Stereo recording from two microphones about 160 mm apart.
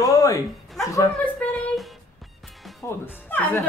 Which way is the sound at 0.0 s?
20° left (ahead or behind).